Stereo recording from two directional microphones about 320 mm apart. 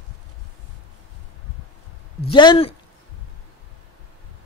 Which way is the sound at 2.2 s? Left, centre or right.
Centre.